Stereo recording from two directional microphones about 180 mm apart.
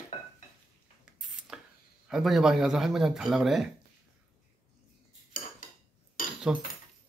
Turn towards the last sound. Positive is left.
turn(degrees=50)  # may be behind; listen again after turning